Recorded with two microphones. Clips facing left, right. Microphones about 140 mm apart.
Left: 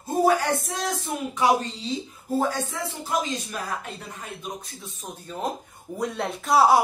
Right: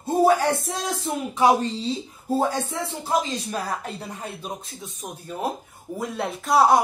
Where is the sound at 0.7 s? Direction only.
30° right (ahead or behind).